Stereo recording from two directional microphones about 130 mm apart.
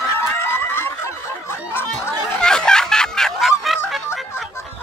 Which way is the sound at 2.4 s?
5° left (ahead or behind).